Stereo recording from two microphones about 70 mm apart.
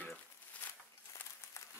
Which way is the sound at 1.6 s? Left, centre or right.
Left.